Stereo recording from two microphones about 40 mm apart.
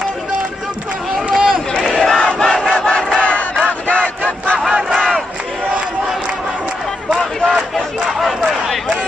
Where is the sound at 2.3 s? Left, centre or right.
Centre.